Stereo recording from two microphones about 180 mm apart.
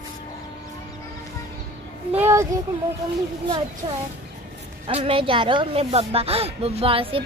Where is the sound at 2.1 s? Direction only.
15° right (ahead or behind).